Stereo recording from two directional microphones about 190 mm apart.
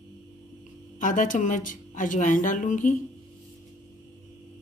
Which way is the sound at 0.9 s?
45° left (ahead or behind).